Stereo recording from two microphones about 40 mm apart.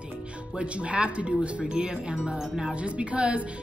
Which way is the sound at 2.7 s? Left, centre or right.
Right.